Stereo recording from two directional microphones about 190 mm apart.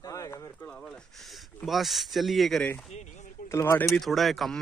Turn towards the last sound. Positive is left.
turn(degrees=0)  # may be behind; listen again after turning